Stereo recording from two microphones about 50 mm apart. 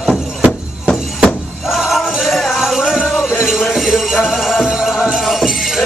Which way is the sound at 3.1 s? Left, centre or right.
Centre.